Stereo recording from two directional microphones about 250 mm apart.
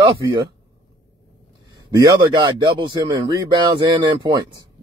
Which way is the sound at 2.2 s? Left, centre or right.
Centre.